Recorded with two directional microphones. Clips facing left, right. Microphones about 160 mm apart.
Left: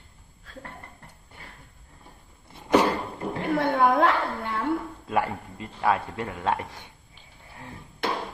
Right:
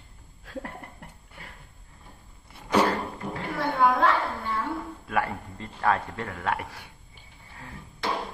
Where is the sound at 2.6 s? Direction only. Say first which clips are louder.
Left 2 dB; 15° left (ahead or behind).